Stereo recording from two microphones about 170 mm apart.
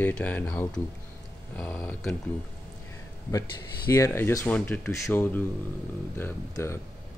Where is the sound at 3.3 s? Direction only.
20° left (ahead or behind).